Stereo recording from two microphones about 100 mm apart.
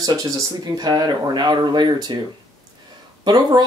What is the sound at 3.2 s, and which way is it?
Speech, 45° right (ahead or behind).